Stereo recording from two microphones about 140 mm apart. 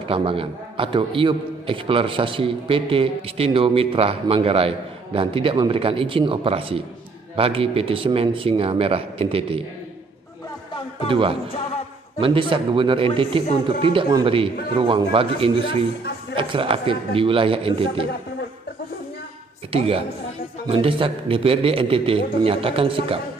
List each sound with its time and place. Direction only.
0.1 s a man's voice: 40° right (ahead or behind)
11.1 s a man's voice: 40° right (ahead or behind)
20.6 s a man's voice: 40° right (ahead or behind)